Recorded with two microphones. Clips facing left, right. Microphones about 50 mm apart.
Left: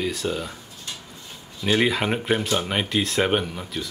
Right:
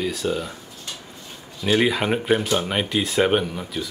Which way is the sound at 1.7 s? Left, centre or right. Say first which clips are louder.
Right 2 dB; centre.